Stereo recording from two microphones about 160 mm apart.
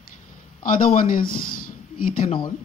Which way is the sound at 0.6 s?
60° left (ahead or behind).